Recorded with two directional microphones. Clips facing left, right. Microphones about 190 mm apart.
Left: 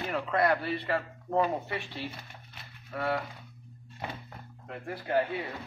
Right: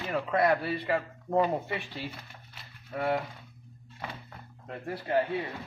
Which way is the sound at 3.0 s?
20° right (ahead or behind).